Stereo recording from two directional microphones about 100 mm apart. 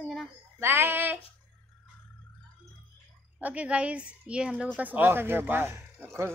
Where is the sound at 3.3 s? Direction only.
15° right (ahead or behind).